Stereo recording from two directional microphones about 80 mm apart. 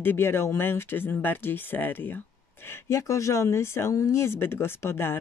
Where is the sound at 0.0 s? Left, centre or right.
Left.